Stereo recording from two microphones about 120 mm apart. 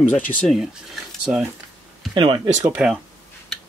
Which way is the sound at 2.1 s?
45° right (ahead or behind).